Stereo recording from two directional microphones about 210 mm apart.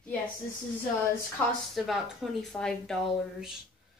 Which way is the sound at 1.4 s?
5° left (ahead or behind).